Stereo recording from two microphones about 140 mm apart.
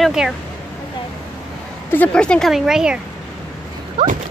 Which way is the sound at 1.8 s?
10° left (ahead or behind).